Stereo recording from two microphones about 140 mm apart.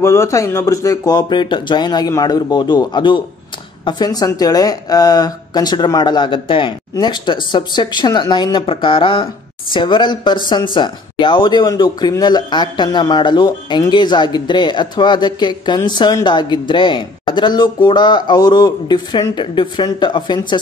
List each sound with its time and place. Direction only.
0.0 s speech: 20° left (ahead or behind)